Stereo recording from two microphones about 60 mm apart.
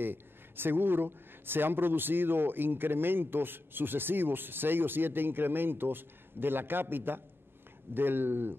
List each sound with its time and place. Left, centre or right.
0.0 s speech: right